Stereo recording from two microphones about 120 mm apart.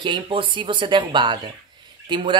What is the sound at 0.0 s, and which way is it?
Speech, 45° right (ahead or behind).